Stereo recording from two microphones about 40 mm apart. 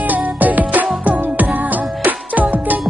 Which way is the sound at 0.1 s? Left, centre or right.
Right.